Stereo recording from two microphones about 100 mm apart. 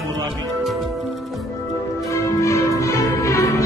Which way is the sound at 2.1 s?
30° left (ahead or behind).